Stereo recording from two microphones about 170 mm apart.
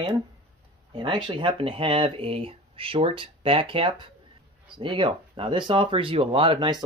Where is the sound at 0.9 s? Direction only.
30° right (ahead or behind).